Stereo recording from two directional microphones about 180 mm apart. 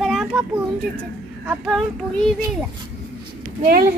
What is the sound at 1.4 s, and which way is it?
Speech, 5° right (ahead or behind).